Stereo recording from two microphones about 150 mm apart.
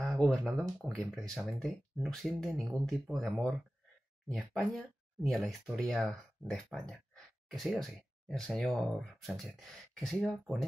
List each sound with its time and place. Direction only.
0.0 s speech: centre (ahead or behind)
4.3 s speech: centre (ahead or behind)